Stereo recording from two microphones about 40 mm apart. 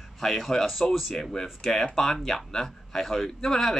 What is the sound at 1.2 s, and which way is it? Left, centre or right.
Speech, centre.